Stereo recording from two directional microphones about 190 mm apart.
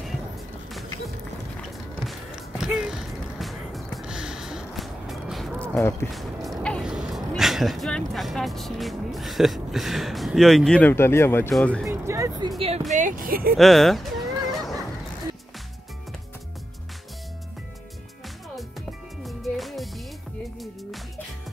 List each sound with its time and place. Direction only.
2.6 s music: 5° right (ahead or behind)
6.1 s speech: centre (ahead or behind)
11.9 s speech: 15° right (ahead or behind); by 12.8 s 30° right (ahead or behind)
12.9 s speech: 45° right (ahead or behind)
13.6 s fowl: centre (ahead or behind)
18.2 s music: centre (ahead or behind)